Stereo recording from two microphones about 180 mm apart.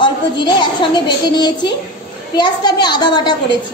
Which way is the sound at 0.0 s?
25° left (ahead or behind).